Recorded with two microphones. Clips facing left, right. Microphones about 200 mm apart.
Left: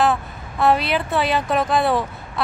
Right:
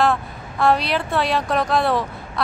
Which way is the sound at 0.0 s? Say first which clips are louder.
Even; centre (ahead or behind).